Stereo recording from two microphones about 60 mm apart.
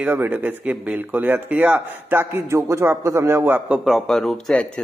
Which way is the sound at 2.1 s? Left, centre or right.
Right.